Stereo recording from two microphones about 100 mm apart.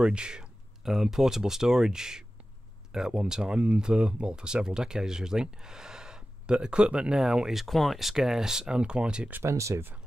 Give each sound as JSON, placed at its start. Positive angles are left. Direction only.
{"t": 0.0, "sound": "speech", "side_deg": -10}
{"t": 9.4, "sound": "speech", "side_deg": -30}